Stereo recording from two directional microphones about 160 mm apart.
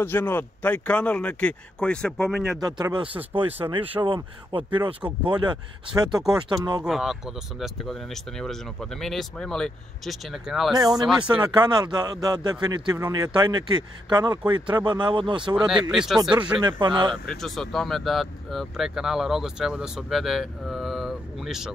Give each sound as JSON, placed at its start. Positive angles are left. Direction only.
{"t": 0.0, "sound": "speech", "side_deg": 15}
{"t": 2.6, "sound": "speech", "side_deg": -25}
{"t": 6.8, "sound": "speech", "side_deg": -5}
{"t": 11.4, "sound": "speech", "side_deg": -25}
{"t": 15.5, "sound": "speech", "side_deg": -5}
{"t": 16.2, "sound": "speech", "side_deg": -30}
{"t": 17.1, "sound": "speech", "side_deg": 0}